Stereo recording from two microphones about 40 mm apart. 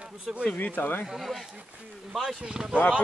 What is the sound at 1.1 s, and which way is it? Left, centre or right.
Speech, centre.